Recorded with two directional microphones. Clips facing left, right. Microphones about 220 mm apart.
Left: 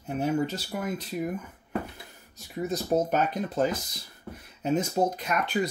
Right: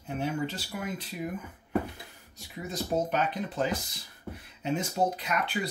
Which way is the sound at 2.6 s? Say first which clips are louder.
Left 4 dB; 45° left (ahead or behind).